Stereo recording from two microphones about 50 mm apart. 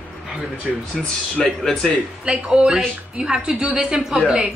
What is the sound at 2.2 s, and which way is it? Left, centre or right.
A woman's voice, right.